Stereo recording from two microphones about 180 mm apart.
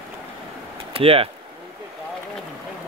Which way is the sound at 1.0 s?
30° right (ahead or behind).